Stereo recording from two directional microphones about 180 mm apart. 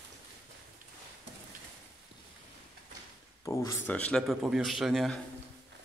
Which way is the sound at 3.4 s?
15° left (ahead or behind).